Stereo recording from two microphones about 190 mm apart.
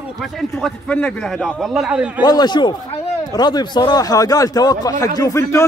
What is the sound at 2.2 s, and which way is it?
Speech, 20° left (ahead or behind).